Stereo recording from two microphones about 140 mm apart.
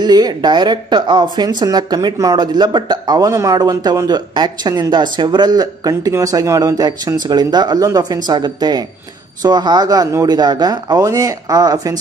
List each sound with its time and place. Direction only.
0.0 s speech: 30° right (ahead or behind)